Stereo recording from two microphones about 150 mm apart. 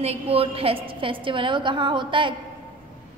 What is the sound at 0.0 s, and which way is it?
A woman's voice, 40° right (ahead or behind).